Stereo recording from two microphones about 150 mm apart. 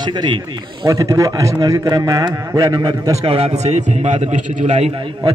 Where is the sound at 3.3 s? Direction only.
45° right (ahead or behind).